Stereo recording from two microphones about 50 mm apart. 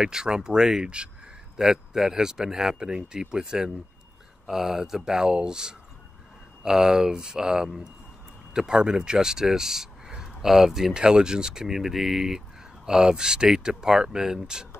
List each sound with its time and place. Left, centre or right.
0.0 s speech: centre
1.6 s speech: centre